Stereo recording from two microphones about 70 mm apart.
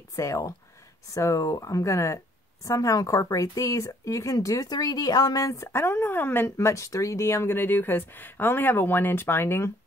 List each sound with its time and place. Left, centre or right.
0.1 s speech: left
5.7 s speech: left
6.5 s speech: left